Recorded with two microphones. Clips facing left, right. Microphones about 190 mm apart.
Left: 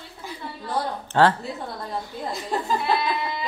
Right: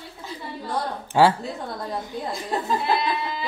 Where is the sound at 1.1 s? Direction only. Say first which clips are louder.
Right 1 dB; 10° right (ahead or behind).